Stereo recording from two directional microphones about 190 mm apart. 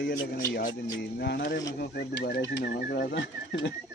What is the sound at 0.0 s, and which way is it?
Speech, 60° left (ahead or behind).